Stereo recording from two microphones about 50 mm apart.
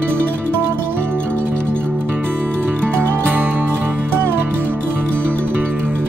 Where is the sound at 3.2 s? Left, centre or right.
Right.